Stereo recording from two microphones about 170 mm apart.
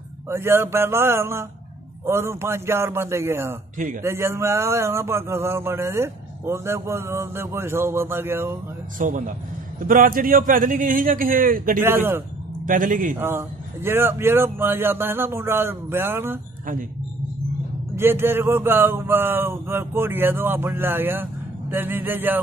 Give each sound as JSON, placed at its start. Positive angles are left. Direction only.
{"t": 0.3, "sound": "speech", "side_deg": -15}
{"t": 8.9, "sound": "a man's voice", "side_deg": -50}
{"t": 11.8, "sound": "speech", "side_deg": -15}
{"t": 12.6, "sound": "a man's voice", "side_deg": -50}
{"t": 13.2, "sound": "speech", "side_deg": -15}
{"t": 17.9, "sound": "speech", "side_deg": -15}